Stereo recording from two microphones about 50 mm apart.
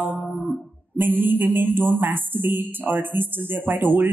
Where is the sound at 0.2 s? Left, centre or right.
Left.